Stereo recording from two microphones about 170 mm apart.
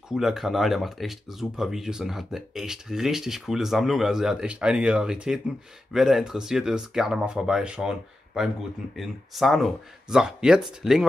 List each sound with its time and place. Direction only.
0.1 s speech: centre (ahead or behind)